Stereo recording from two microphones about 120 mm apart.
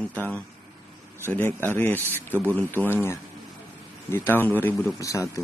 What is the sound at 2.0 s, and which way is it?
Speech, 20° right (ahead or behind).